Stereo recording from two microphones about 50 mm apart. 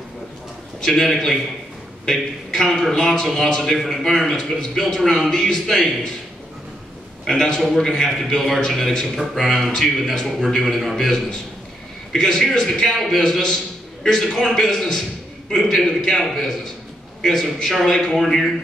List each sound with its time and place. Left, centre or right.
0.7 s a man's voice: centre
7.2 s a man's voice: centre